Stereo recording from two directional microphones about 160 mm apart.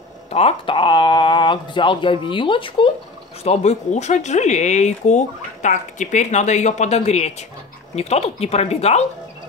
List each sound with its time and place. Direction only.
0.3 s speech: 40° left (ahead or behind)
3.4 s speech: 45° left (ahead or behind)